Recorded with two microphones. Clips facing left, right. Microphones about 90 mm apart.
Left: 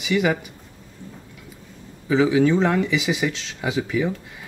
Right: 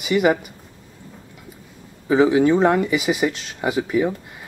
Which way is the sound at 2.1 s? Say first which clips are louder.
Right 2 dB; 20° right (ahead or behind).